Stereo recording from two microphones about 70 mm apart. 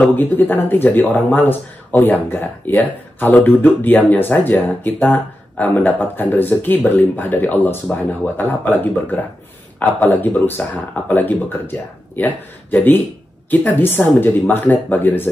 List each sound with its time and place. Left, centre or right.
0.1 s speech: left
12.7 s speech: left